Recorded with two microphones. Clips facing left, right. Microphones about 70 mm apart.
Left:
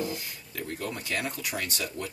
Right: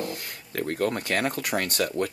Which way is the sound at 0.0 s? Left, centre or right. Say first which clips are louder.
Even; right.